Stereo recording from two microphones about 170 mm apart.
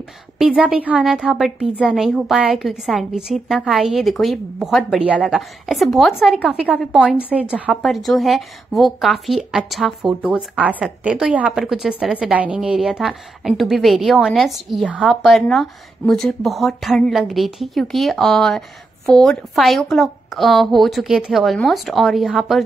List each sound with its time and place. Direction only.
0.4 s a woman's voice: 5° right (ahead or behind)